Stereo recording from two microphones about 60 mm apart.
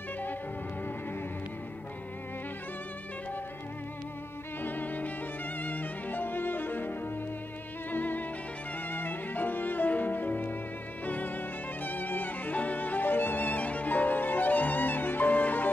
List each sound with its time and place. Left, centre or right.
4.6 s violin: left
5.6 s music: left
11.1 s violin: left